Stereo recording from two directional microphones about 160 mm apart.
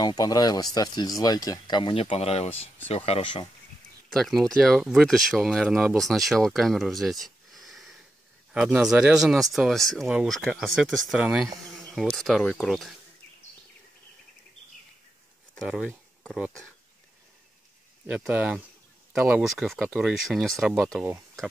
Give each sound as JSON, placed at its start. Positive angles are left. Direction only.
{"t": 0.0, "sound": "speech", "side_deg": 25}
{"t": 4.1, "sound": "speech", "side_deg": 0}
{"t": 15.5, "sound": "speech", "side_deg": 0}
{"t": 18.0, "sound": "speech", "side_deg": -10}